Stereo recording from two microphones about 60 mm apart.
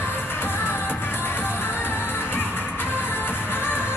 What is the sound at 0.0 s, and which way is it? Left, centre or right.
Music, left.